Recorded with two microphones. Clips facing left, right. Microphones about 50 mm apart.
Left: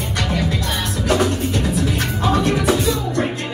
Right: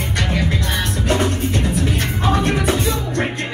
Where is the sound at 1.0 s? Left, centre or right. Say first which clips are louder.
Left 2 dB; right.